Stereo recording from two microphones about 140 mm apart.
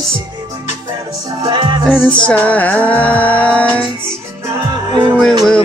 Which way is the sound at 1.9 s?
10° left (ahead or behind).